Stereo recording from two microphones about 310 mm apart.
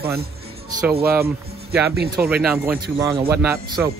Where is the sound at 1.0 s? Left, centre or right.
Centre.